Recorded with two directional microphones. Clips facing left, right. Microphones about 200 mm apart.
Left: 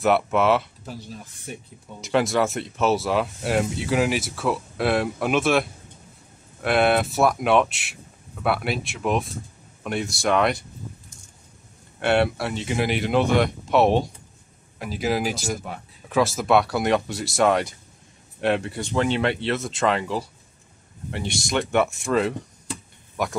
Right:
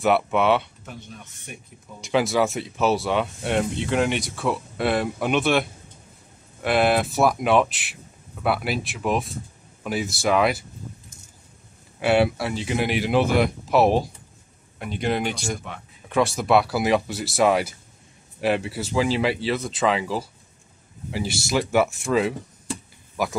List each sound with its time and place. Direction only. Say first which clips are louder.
0.0 s speech: even; centre (ahead or behind)
0.8 s speech: left 3 dB; 35° left (ahead or behind)
2.0 s speech: even; centre (ahead or behind)
12.0 s speech: right 1 dB; centre (ahead or behind)